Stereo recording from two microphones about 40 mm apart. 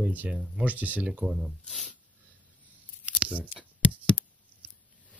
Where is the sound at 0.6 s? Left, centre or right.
Right.